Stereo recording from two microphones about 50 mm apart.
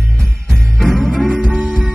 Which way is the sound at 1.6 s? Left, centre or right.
Right.